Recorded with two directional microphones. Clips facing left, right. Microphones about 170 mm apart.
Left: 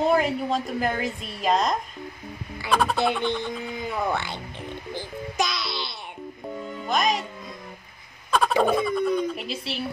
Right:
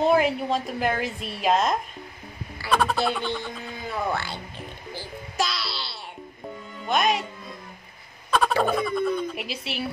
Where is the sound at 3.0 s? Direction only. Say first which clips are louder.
Left 2 dB; 20° left (ahead or behind).